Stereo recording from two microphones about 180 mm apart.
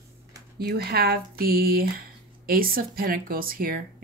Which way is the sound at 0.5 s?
60° right (ahead or behind).